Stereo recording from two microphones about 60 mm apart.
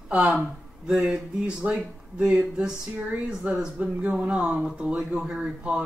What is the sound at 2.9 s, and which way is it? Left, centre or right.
Speech, right.